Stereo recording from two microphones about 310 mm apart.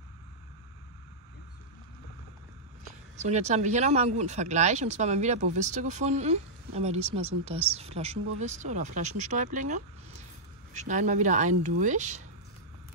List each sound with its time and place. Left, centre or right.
3.2 s speech: right